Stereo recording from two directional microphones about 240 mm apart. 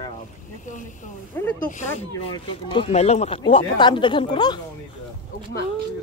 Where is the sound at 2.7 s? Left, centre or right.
Left.